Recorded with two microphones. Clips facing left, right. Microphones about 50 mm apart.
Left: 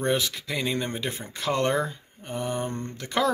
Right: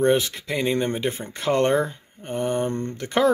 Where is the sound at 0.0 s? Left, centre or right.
Right.